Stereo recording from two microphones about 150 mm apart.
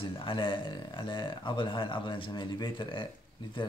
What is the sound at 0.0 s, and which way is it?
Speech, 35° left (ahead or behind).